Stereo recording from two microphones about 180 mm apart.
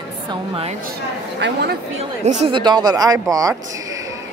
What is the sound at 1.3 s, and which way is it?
Speech, 75° right (ahead or behind).